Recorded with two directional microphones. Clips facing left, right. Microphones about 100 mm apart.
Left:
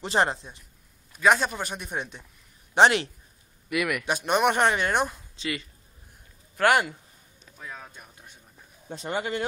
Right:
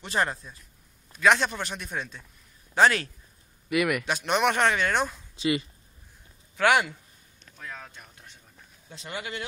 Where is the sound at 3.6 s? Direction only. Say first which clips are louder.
Right 2 dB; centre (ahead or behind).